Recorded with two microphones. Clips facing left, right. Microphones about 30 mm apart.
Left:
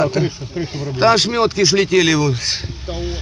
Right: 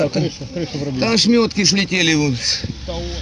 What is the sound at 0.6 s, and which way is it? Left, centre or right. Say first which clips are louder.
Speech: left 1 dB; centre.